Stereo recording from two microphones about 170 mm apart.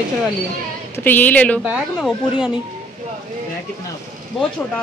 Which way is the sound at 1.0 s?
10° left (ahead or behind).